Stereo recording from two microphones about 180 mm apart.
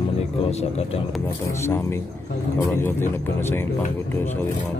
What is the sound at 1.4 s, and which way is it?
Speech, 15° left (ahead or behind).